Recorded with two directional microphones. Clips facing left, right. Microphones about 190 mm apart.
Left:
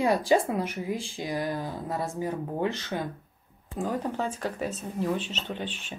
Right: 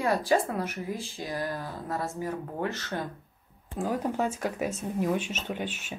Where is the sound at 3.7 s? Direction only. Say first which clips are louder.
Right 1 dB; 5° right (ahead or behind).